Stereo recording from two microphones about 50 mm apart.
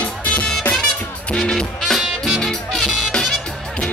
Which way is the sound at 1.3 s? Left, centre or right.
Centre.